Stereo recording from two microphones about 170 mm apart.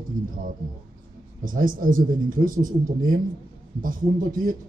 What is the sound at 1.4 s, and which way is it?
A man's voice, 55° right (ahead or behind).